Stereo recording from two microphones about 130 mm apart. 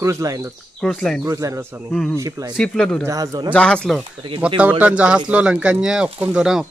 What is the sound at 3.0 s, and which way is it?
Speech, 25° right (ahead or behind).